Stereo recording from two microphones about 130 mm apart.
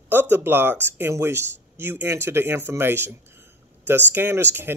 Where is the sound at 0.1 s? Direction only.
15° right (ahead or behind).